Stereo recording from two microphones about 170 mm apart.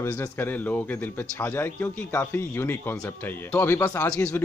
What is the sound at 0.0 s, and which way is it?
A man's voice, 15° left (ahead or behind).